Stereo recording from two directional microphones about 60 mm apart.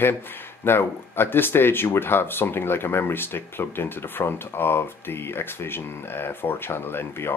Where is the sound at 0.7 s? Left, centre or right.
Left.